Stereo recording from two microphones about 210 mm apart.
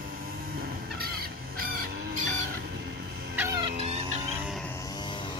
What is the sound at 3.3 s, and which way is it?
Chicken, 15° right (ahead or behind).